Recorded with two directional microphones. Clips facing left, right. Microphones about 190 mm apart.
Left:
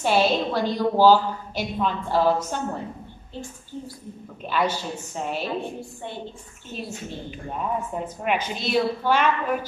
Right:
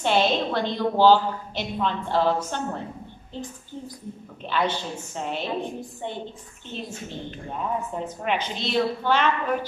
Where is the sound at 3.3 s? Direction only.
15° right (ahead or behind).